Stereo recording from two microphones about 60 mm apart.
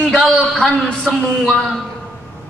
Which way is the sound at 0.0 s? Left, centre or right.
Centre.